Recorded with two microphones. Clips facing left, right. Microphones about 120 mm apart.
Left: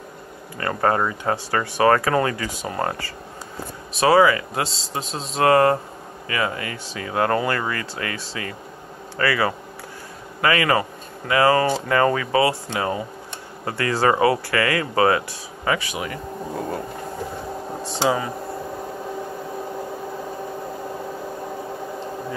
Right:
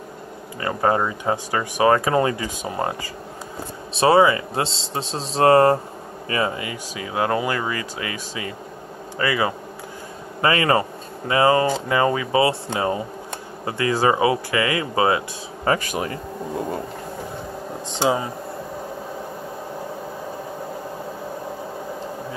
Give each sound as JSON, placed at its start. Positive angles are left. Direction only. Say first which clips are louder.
{"t": 0.6, "sound": "speech", "louder": "even", "side_deg": -15}
{"t": 3.9, "sound": "speech", "louder": "even", "side_deg": -25}
{"t": 15.6, "sound": "speech", "louder": "right 2 dB", "side_deg": -40}
{"t": 18.0, "sound": "speech", "louder": "right 1 dB", "side_deg": -25}